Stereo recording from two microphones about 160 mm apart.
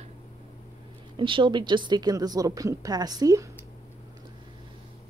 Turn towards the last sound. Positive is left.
turn(degrees=-20)  # may be behind; listen again after turning